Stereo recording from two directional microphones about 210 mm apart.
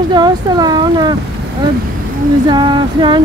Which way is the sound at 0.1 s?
20° right (ahead or behind).